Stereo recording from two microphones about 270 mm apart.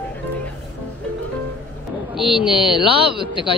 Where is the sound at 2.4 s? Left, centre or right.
Centre.